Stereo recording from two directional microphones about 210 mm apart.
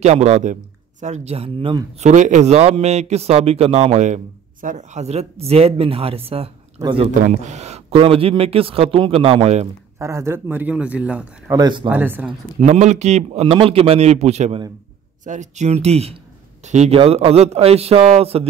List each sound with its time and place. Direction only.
0.0 s a man's voice: 30° right (ahead or behind)
2.0 s a man's voice: 35° right (ahead or behind)
9.9 s speech: 15° right (ahead or behind)
11.5 s a man's voice: 20° right (ahead or behind)
11.9 s speech: 10° right (ahead or behind)
12.3 s a man's voice: 35° right (ahead or behind)